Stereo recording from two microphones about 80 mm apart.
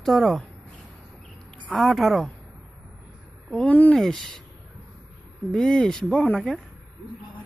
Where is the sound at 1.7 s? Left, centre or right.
Centre.